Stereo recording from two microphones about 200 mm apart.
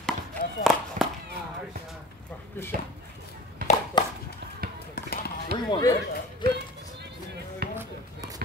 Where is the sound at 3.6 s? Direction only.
45° right (ahead or behind).